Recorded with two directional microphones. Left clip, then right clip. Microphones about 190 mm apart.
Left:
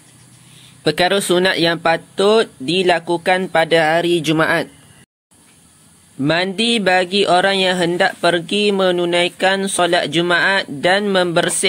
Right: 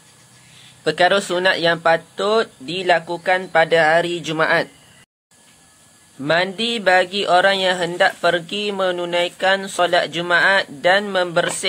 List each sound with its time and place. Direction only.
0.8 s speech: 35° left (ahead or behind)
6.2 s speech: 35° left (ahead or behind)